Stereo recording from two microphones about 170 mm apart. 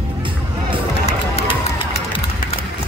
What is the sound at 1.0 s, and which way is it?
Music, 40° left (ahead or behind).